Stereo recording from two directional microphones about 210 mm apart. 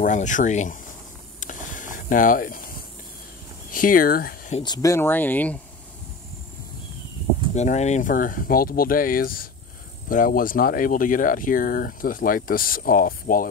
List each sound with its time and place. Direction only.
0.0 s speech: 35° left (ahead or behind)
1.4 s a sound: 35° left (ahead or behind)
3.7 s speech: 40° left (ahead or behind)
4.6 s speech: 20° left (ahead or behind)
7.5 s speech: 35° left (ahead or behind)